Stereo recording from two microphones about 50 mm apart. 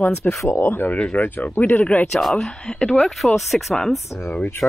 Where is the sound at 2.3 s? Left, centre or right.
Centre.